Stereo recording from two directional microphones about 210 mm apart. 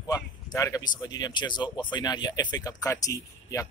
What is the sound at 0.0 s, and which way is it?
Speech, 15° left (ahead or behind).